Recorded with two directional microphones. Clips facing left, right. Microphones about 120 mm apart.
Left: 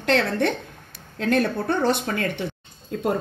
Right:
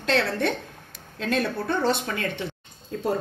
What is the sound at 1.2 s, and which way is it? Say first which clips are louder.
Speech: left 4 dB; 60° left (ahead or behind).